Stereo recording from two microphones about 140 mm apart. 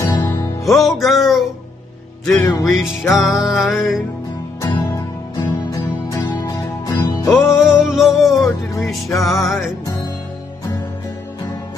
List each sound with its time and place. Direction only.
0.0 s music: 25° left (ahead or behind)
0.7 s music: centre (ahead or behind)
2.5 s music: centre (ahead or behind)
4.6 s music: 30° left (ahead or behind)
7.5 s music: 5° right (ahead or behind)
8.4 s music: 25° left (ahead or behind)
9.2 s music: centre (ahead or behind)